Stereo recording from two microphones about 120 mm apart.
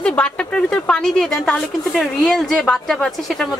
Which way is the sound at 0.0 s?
10° left (ahead or behind).